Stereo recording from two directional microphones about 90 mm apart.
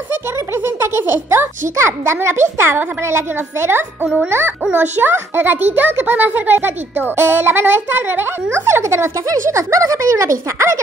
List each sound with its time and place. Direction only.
0.7 s a child's voice: 30° right (ahead or behind)